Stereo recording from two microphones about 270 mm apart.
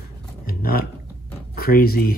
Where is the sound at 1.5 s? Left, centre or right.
Left.